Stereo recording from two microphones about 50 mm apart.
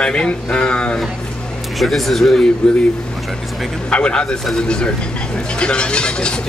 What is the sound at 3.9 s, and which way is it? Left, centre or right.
Speech, left.